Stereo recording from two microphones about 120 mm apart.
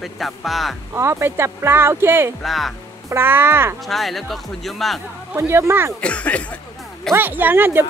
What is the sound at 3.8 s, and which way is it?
Speech, centre (ahead or behind).